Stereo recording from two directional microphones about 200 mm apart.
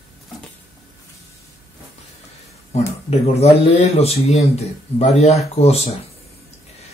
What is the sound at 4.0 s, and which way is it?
Speech, 30° left (ahead or behind).